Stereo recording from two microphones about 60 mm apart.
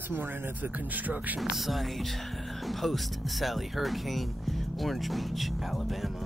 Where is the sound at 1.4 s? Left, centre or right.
Centre.